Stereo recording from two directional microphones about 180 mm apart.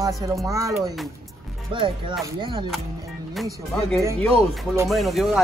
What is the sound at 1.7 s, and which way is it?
Speech, 30° right (ahead or behind).